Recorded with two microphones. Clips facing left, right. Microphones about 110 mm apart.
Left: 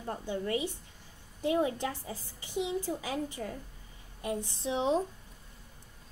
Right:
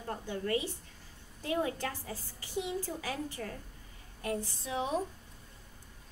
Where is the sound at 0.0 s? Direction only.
15° left (ahead or behind).